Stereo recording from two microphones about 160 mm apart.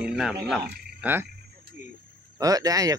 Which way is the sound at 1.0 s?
10° right (ahead or behind).